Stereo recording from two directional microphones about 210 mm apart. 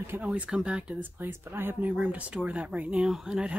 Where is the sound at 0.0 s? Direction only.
10° right (ahead or behind).